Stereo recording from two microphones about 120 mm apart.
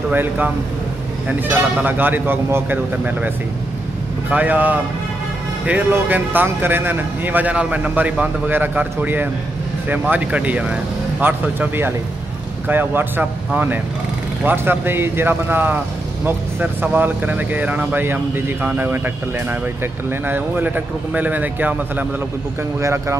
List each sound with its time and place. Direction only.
0.1 s speech: 15° right (ahead or behind)
1.8 s speech: 15° right (ahead or behind)
4.3 s speech: 15° right (ahead or behind)